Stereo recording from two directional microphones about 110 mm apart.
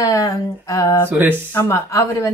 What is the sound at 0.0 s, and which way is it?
Speech, 35° left (ahead or behind).